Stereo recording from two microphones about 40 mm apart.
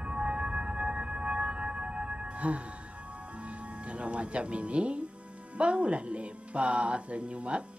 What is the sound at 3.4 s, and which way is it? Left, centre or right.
Speech, right.